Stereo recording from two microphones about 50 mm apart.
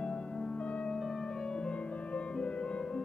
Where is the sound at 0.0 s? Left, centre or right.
Centre.